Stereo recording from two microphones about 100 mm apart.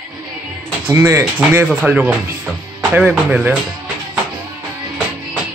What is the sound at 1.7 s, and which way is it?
Speech, 10° right (ahead or behind).